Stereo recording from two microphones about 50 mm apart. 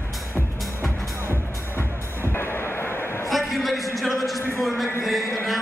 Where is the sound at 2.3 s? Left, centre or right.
Left.